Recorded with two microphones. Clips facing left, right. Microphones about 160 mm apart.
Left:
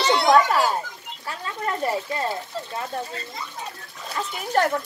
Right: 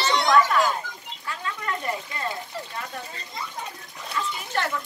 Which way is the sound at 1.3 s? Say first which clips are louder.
Left 2 dB; 35° left (ahead or behind).